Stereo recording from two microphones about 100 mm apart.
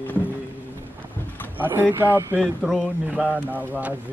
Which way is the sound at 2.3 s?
5° right (ahead or behind).